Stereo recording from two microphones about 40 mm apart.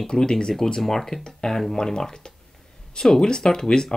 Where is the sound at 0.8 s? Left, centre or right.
Centre.